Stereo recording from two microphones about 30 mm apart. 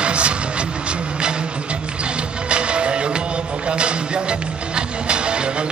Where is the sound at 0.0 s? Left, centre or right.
Right.